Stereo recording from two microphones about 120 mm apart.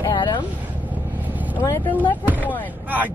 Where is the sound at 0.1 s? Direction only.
40° left (ahead or behind).